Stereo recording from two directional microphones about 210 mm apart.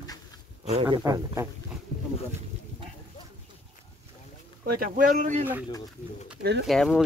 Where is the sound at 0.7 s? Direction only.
25° right (ahead or behind).